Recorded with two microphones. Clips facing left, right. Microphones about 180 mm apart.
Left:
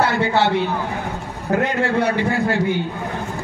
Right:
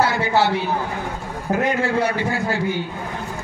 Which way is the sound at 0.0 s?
60° left (ahead or behind).